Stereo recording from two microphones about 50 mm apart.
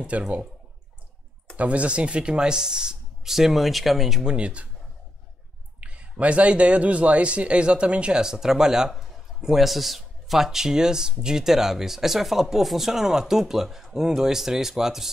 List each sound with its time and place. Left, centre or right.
0.1 s a man's voice: right
1.6 s speech: right; by 4.2 s centre
4.2 s a man's voice: centre
5.8 s a man's voice: right; by 15.0 s centre